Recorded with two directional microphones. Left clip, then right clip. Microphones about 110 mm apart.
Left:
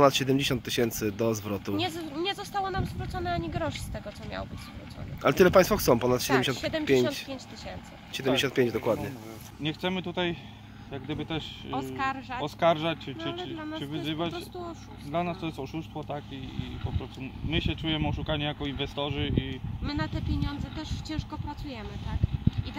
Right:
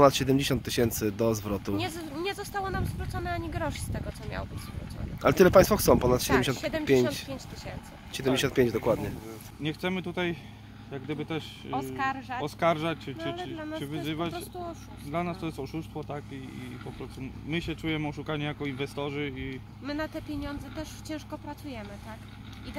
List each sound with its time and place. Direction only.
0.0 s speech: 25° right (ahead or behind)
8.4 s speech: 30° right (ahead or behind)
9.6 s speech: 20° left (ahead or behind)
11.7 s a woman's voice: 40° right (ahead or behind)
12.4 s speech: 10° left (ahead or behind)
13.2 s a woman's voice: 50° right (ahead or behind)
14.0 s speech: 15° left (ahead or behind)
17.2 s speech: 20° left (ahead or behind)
19.8 s a woman's voice: 45° right (ahead or behind)